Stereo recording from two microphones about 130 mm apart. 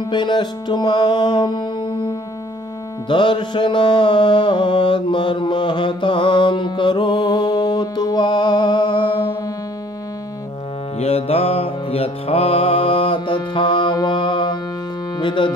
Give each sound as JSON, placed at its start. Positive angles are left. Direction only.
{"t": 0.1, "sound": "music", "side_deg": 35}
{"t": 11.0, "sound": "music", "side_deg": 50}
{"t": 15.1, "sound": "speech", "side_deg": 40}